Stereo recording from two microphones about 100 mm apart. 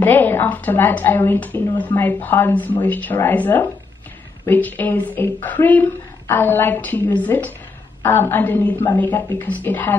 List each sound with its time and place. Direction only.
0.0 s speech: 20° left (ahead or behind)